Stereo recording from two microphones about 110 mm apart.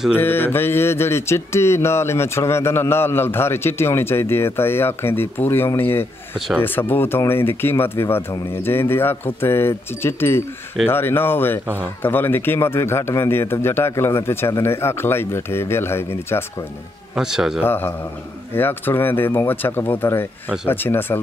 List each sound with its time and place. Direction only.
0.1 s speech: 20° left (ahead or behind)
6.3 s speech: 5° right (ahead or behind)
6.6 s speech: 20° left (ahead or behind)
17.1 s speech: 5° right (ahead or behind)
17.6 s speech: 20° left (ahead or behind)